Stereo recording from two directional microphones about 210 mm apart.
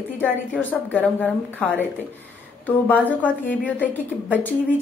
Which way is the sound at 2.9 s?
10° left (ahead or behind).